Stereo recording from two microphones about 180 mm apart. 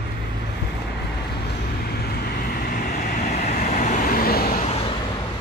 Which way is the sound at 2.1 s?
60° left (ahead or behind).